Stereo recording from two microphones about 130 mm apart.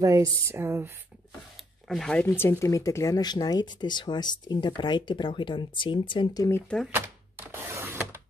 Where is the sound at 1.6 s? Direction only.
5° left (ahead or behind).